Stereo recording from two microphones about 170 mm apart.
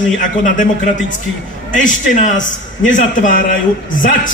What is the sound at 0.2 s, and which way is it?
Speech, 50° left (ahead or behind).